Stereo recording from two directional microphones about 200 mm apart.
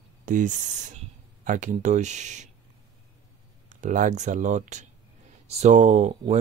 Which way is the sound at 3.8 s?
40° right (ahead or behind).